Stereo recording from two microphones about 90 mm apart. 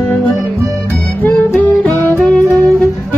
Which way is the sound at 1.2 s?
20° left (ahead or behind).